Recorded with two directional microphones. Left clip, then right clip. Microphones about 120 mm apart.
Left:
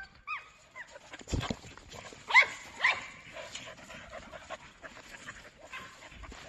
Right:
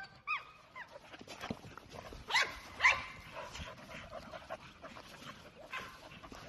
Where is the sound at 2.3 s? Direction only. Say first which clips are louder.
Left 10 dB; 70° right (ahead or behind).